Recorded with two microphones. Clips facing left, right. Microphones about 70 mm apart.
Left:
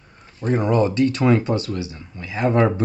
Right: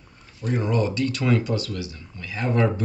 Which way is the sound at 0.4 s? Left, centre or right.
Left.